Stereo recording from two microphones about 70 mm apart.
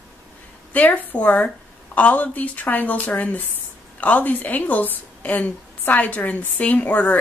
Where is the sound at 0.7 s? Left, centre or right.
Left.